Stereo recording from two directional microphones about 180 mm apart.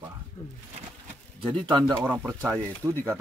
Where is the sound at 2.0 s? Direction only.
10° right (ahead or behind).